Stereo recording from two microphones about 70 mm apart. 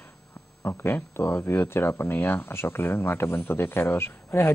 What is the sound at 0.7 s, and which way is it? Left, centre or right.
Speech, left.